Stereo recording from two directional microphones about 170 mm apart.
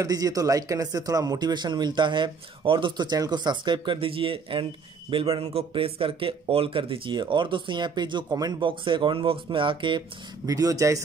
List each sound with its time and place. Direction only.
0.0 s speech: 20° right (ahead or behind)